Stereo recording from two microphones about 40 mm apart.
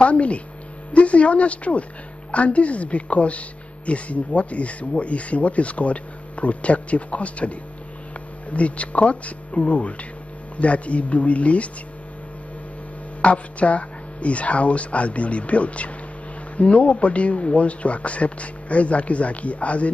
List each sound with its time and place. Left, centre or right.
0.0 s a woman's voice: left
13.2 s a woman's voice: left